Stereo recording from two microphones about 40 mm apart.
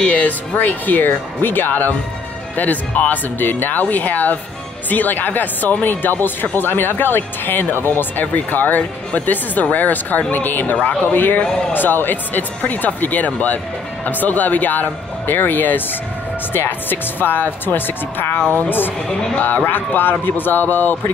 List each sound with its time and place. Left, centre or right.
0.6 s speech: left
2.5 s speech: left
3.3 s speech: left
11.1 s speech: left
19.3 s speech: left